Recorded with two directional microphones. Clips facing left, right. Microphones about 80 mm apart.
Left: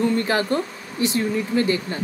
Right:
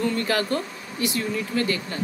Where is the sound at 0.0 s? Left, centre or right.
Left.